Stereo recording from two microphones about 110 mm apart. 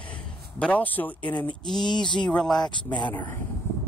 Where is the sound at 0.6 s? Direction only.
15° left (ahead or behind).